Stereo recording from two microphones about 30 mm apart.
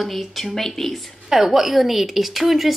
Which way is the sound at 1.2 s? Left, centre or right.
Centre.